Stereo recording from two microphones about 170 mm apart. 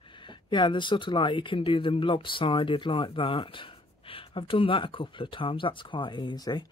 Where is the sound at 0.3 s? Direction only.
25° left (ahead or behind).